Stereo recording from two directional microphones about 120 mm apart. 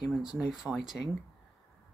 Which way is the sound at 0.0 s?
5° right (ahead or behind).